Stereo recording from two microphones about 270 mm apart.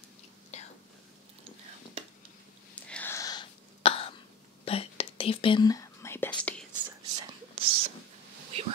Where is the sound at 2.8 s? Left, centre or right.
Centre; by 4.2 s left.